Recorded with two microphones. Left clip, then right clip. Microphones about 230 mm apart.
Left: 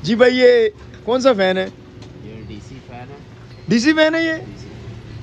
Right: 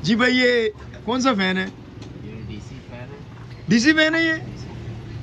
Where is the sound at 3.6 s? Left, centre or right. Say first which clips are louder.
Left 2 dB; left.